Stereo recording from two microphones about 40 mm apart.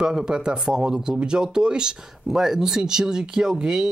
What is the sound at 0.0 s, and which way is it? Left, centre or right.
Speech, centre.